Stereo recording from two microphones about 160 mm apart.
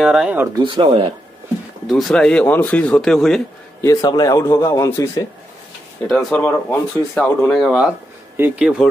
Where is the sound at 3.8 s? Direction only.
20° left (ahead or behind).